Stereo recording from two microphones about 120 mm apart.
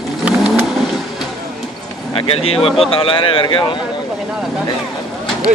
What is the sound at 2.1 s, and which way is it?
Speech, 55° left (ahead or behind).